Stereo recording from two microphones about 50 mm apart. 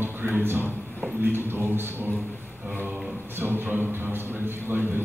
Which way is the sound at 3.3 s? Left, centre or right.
Right.